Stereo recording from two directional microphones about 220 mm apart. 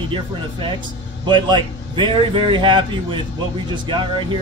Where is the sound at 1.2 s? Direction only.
20° right (ahead or behind).